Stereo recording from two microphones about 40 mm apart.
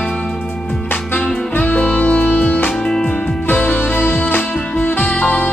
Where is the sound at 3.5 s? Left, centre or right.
Left.